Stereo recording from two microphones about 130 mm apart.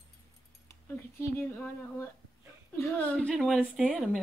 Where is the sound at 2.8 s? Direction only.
15° left (ahead or behind).